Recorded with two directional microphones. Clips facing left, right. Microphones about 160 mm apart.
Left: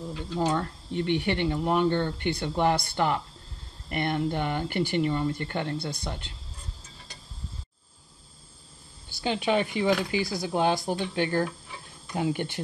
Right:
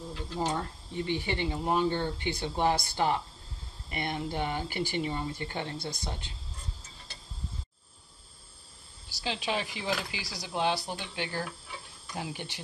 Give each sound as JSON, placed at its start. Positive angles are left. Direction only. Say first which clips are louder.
{"t": 0.5, "sound": "speech", "louder": "left 5 dB", "side_deg": 65}
{"t": 9.1, "sound": "speech", "louder": "left 7 dB", "side_deg": 55}
{"t": 12.2, "sound": "speech", "louder": "left 10 dB", "side_deg": 60}